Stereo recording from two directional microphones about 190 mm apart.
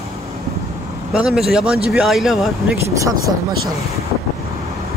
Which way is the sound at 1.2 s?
5° right (ahead or behind).